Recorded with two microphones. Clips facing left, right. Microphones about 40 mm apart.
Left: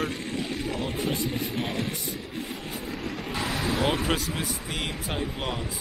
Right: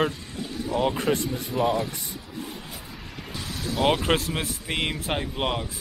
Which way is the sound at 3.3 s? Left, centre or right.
Left.